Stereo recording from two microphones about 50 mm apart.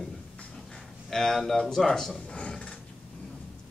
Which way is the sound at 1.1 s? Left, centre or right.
Centre.